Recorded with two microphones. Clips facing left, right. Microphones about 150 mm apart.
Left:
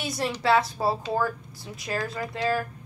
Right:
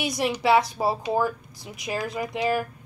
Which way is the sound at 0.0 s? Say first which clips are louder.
Right 3 dB; 15° right (ahead or behind).